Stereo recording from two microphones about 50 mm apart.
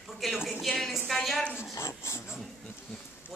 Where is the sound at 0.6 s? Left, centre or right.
Centre.